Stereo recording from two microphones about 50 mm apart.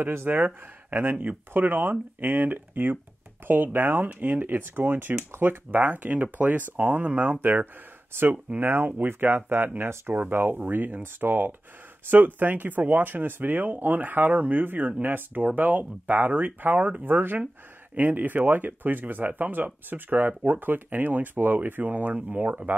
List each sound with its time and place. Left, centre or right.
0.1 s speech: right
0.8 s speech: right
8.1 s speech: right